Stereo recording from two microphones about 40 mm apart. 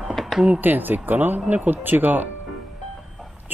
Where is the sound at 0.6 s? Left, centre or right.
Right.